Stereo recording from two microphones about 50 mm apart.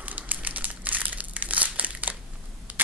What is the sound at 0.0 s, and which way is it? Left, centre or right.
Crumpling, right.